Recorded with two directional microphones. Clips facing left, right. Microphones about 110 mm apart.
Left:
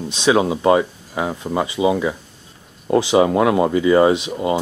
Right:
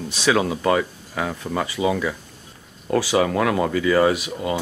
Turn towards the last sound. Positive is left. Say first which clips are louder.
# left 4 dB
turn(degrees=25)  # may be behind; listen again after turning